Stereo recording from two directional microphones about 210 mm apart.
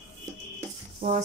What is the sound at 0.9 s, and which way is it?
Speech, 35° right (ahead or behind).